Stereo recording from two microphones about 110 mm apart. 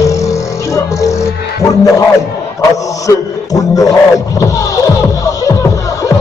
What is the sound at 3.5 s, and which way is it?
Music, 30° left (ahead or behind).